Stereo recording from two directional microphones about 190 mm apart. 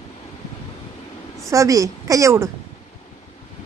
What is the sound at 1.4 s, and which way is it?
A woman's voice, 15° right (ahead or behind).